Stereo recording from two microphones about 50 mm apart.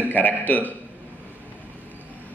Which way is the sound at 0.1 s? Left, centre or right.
Left.